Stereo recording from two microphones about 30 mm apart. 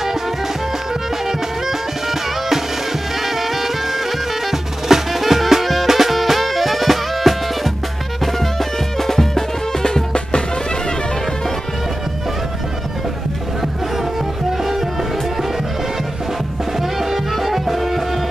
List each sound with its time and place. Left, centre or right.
1.7 s music: centre; by 10.4 s left
14.6 s music: centre
16.7 s music: centre